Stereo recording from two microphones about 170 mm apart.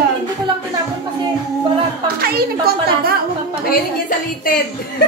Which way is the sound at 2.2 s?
65° right (ahead or behind).